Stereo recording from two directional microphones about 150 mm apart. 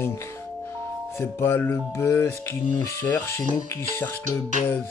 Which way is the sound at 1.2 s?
15° left (ahead or behind).